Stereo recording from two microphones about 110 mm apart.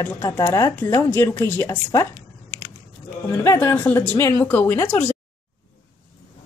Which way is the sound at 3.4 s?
25° left (ahead or behind).